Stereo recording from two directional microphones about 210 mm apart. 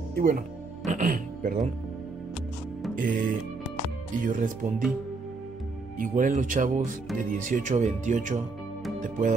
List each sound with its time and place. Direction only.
0.1 s speech: 45° right (ahead or behind)
3.0 s speech: 40° right (ahead or behind)
5.9 s speech: 40° right (ahead or behind)